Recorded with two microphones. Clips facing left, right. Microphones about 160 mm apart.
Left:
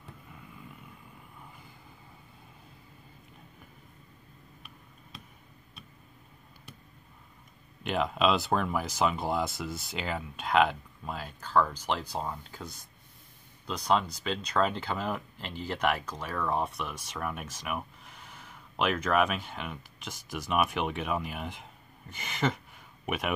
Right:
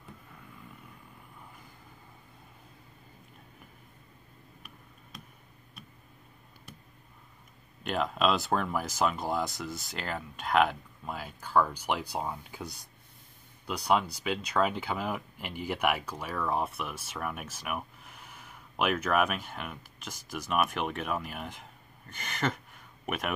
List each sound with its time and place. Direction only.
7.8 s speech: centre (ahead or behind)